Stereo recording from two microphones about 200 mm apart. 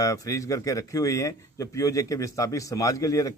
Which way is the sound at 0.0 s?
15° left (ahead or behind).